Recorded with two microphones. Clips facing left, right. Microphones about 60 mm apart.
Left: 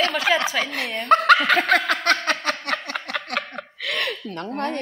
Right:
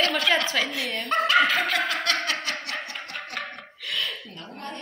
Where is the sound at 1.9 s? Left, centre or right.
Left.